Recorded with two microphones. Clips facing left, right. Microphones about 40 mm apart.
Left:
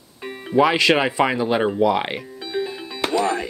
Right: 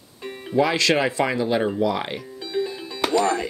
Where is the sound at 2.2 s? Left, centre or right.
Centre.